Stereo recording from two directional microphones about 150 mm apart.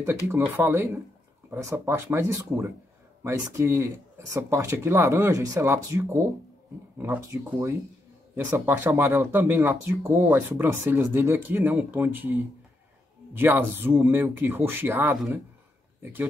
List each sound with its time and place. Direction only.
0.3 s speech: 20° right (ahead or behind)